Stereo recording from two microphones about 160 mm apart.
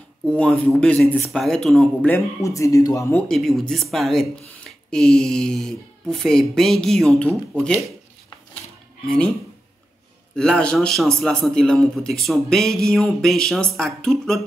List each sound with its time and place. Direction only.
0.4 s speech: 5° left (ahead or behind)
2.0 s speech: 15° left (ahead or behind)
3.3 s speech: centre (ahead or behind)
9.0 s speech: 5° left (ahead or behind)
10.3 s speech: 5° left (ahead or behind)